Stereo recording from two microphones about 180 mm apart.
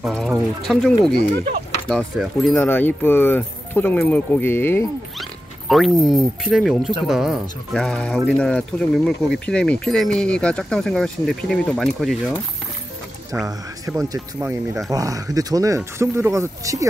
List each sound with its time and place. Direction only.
0.0 s speech: centre (ahead or behind)
5.7 s speech: centre (ahead or behind)
14.0 s speech: 15° right (ahead or behind)